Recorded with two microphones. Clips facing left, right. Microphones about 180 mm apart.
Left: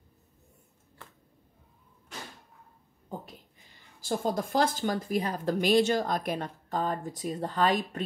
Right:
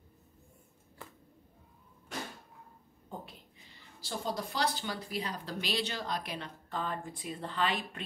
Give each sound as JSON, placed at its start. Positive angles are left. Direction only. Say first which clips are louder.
{"t": 4.0, "sound": "speech", "louder": "left 7 dB", "side_deg": 50}